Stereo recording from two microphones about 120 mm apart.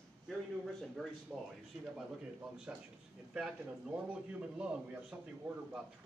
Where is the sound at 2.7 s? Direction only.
10° right (ahead or behind).